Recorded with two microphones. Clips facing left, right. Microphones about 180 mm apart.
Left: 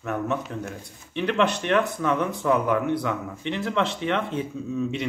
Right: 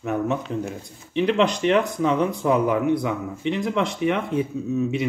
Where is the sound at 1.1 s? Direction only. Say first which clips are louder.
Right 3 dB; 15° right (ahead or behind).